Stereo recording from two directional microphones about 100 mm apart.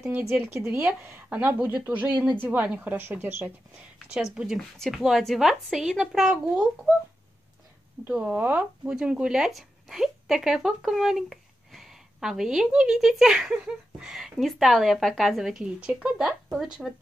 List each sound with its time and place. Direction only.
0.0 s a woman's voice: 25° right (ahead or behind)
4.1 s a woman's voice: 5° right (ahead or behind)
8.1 s a woman's voice: 10° right (ahead or behind)